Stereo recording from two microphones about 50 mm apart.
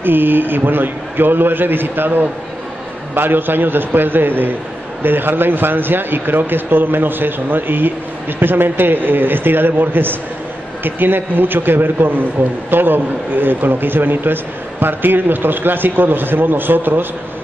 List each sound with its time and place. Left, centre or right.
0.0 s a man's voice: right